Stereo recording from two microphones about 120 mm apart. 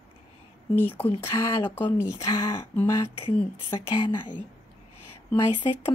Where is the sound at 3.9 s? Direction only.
40° left (ahead or behind).